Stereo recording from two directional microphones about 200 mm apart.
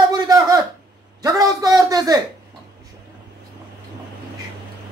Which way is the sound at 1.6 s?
20° right (ahead or behind).